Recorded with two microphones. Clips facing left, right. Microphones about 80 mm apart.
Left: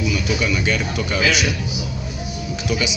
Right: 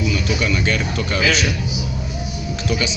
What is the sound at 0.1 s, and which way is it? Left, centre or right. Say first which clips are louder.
A man's voice: even; centre.